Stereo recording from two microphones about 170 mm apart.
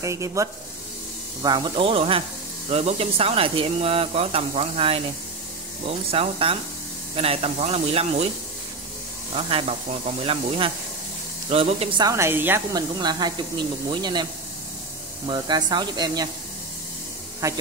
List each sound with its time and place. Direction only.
0.0 s speech: 20° right (ahead or behind); by 8.3 s 35° right (ahead or behind)
9.3 s speech: 35° right (ahead or behind)
12.0 s speech: 15° right (ahead or behind)
15.2 s speech: 25° right (ahead or behind)
17.4 s speech: 20° right (ahead or behind)